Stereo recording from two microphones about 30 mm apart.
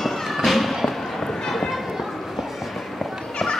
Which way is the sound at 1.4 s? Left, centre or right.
Centre.